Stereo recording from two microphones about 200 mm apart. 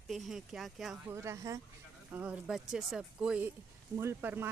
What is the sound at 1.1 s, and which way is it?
Speech, 15° right (ahead or behind).